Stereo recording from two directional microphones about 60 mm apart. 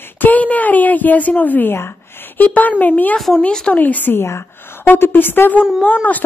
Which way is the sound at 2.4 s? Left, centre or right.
Left.